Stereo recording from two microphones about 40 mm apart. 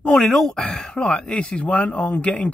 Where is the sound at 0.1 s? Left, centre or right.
Centre.